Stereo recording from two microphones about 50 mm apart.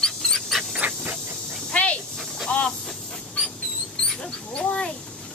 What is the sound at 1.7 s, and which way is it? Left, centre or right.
Snake, left.